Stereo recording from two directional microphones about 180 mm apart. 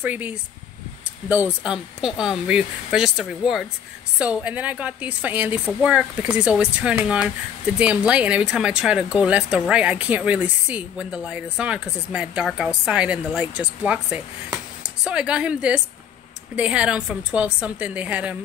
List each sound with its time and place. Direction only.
0.0 s a woman's voice: 10° right (ahead or behind)